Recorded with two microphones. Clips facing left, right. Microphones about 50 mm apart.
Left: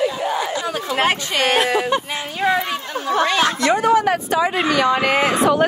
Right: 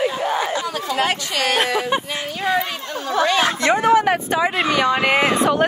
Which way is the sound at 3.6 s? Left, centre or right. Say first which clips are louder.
Right 1 dB; right.